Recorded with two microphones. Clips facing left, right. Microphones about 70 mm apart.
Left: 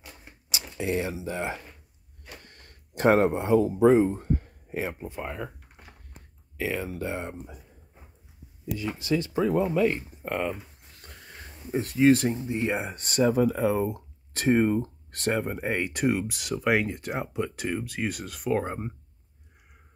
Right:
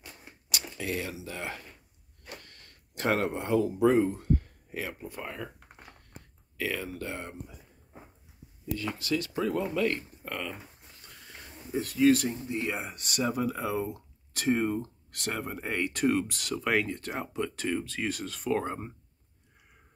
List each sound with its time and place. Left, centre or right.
0.7 s speech: left
2.2 s a sound: left
3.4 s speech: centre
6.5 s speech: centre
8.6 s speech: centre
11.0 s a sound: left
12.4 s speech: left
15.5 s speech: left